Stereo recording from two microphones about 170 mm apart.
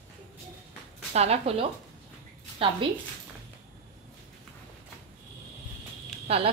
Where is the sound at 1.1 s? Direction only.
35° right (ahead or behind).